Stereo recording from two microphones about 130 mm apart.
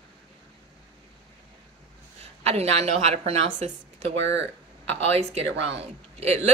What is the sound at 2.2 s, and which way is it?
A woman's voice, 55° right (ahead or behind).